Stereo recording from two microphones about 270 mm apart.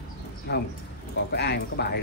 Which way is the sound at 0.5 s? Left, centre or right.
Left.